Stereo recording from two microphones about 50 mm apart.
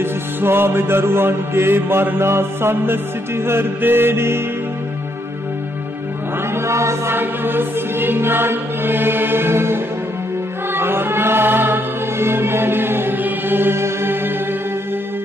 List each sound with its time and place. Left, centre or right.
0.0 s music: right
6.6 s chant: right
7.1 s music: right